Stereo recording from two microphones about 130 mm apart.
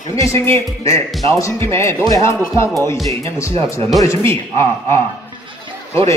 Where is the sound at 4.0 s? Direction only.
25° left (ahead or behind).